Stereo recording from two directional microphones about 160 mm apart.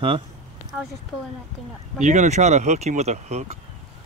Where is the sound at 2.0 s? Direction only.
45° right (ahead or behind).